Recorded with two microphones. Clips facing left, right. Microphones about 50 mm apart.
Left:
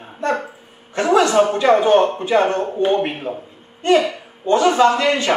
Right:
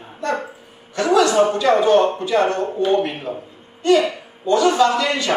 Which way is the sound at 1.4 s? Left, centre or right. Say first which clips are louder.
Left 1 dB; left.